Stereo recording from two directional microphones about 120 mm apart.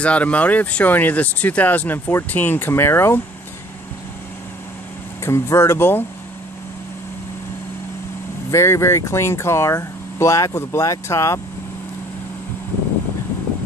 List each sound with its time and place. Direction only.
0.0 s speech: 10° left (ahead or behind)
5.2 s speech: 25° left (ahead or behind)
8.5 s speech: 25° left (ahead or behind)